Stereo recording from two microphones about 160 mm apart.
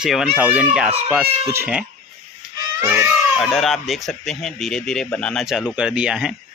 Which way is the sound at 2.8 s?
15° right (ahead or behind).